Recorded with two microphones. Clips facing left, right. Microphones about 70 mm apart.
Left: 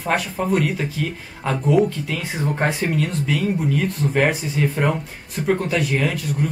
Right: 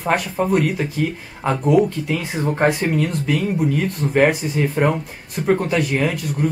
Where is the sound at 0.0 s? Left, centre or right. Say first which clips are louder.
Right 2 dB; centre.